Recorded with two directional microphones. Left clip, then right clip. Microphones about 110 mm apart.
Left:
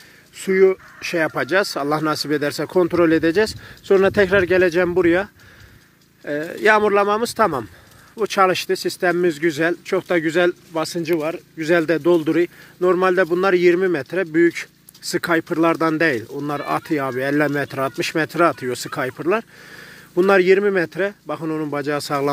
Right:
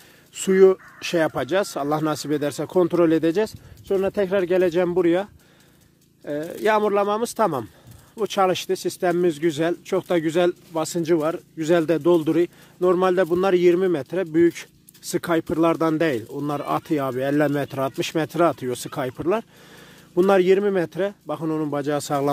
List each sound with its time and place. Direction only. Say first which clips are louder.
0.4 s speech: even; 55° right (ahead or behind)
1.3 s speech: left 4 dB; 15° right (ahead or behind)
3.8 s speech: left 7 dB; 30° left (ahead or behind)
4.1 s speech: left 6 dB; 5° left (ahead or behind)
4.4 s a man's voice: left 4 dB; 10° right (ahead or behind)
11.0 s speech: right 2 dB; 50° right (ahead or behind)
11.5 s a man's voice: left 3 dB; 30° right (ahead or behind)